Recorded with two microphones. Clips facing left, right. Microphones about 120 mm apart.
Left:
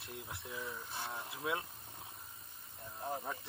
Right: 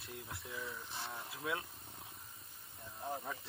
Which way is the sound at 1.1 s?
20° left (ahead or behind).